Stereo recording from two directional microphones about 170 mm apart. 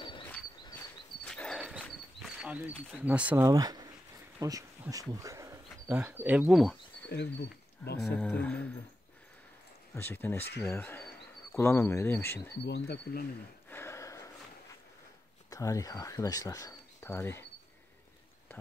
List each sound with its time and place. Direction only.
1.2 s a sound: 5° left (ahead or behind); by 3.8 s 20° right (ahead or behind)
4.4 s speech: 20° right (ahead or behind); by 6.8 s centre (ahead or behind)
8.0 s speech: 5° left (ahead or behind)
9.9 s speech: 15° left (ahead or behind)
12.6 s speech: 80° left
13.7 s a sound: 15° left (ahead or behind)
15.5 s speech: 20° left (ahead or behind)